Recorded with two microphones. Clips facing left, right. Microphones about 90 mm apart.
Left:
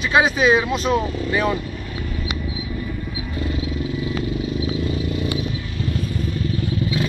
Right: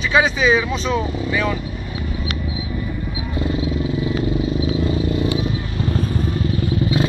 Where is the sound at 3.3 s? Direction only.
25° right (ahead or behind).